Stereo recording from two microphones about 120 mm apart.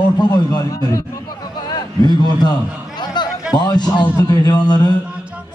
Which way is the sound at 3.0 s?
35° left (ahead or behind).